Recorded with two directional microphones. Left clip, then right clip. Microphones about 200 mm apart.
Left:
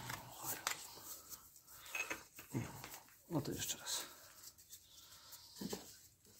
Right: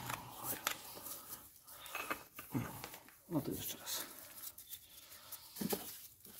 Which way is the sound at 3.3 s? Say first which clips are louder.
Right 1 dB; 5° right (ahead or behind).